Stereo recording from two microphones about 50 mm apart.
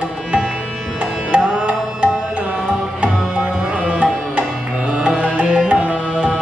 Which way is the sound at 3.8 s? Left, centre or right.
Right.